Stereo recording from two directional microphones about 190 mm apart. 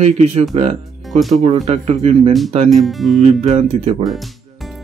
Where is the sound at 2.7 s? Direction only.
Centre (ahead or behind).